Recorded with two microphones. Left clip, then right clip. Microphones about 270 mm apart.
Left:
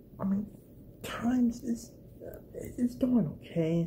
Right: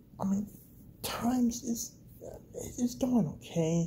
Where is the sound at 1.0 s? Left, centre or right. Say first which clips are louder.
Even; right.